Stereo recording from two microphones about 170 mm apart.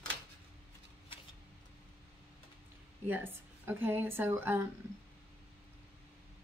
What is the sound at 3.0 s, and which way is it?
Speech, 10° right (ahead or behind).